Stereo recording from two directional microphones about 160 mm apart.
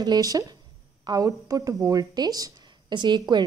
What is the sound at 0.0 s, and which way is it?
A woman's voice, 25° right (ahead or behind).